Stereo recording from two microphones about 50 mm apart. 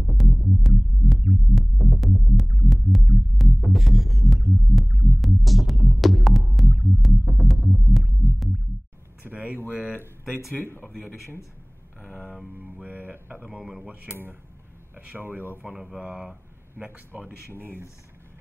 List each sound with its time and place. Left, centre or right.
0.0 s music: centre
9.2 s a sound: right
10.2 s a sound: centre
10.6 s speech: left
12.5 s mantra: right
15.0 s speech: right
15.2 s speech: right
16.0 s speech: right
16.7 s speech: right